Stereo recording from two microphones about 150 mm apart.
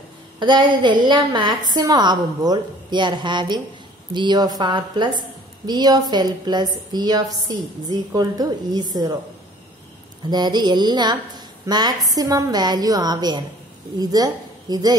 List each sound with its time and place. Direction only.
0.4 s a woman's voice: 30° right (ahead or behind)
10.3 s a woman's voice: 30° right (ahead or behind)